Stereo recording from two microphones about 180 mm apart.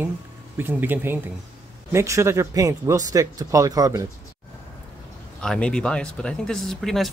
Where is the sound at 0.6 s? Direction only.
10° right (ahead or behind).